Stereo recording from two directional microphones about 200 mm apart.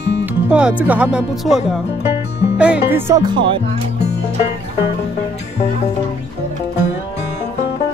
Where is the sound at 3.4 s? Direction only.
25° right (ahead or behind).